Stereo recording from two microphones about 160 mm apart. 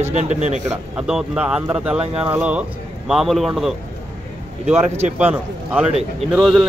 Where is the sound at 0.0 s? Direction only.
45° right (ahead or behind).